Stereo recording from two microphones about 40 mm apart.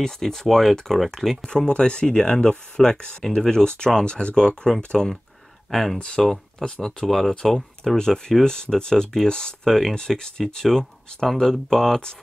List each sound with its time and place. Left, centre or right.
0.0 s speech: centre
1.7 s speech: left; by 5.9 s centre
5.9 s speech: centre
9.7 s speech: centre
9.9 s speech: centre